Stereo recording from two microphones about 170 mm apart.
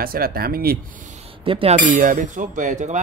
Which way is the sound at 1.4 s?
30° right (ahead or behind).